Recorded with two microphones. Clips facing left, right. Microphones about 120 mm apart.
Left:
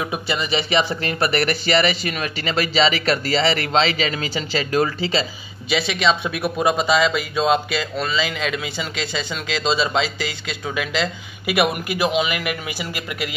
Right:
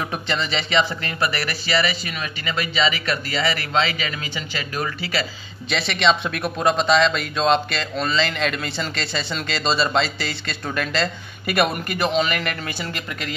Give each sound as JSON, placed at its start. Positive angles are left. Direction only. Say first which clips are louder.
{"t": 0.1, "sound": "speech", "louder": "left 2 dB", "side_deg": 10}
{"t": 1.4, "sound": "speech", "louder": "left 4 dB", "side_deg": 55}
{"t": 2.4, "sound": "speech", "louder": "left 3 dB", "side_deg": 30}
{"t": 5.7, "sound": "speech", "louder": "even", "side_deg": 5}